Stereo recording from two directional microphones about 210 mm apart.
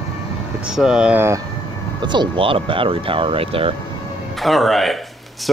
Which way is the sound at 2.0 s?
20° right (ahead or behind).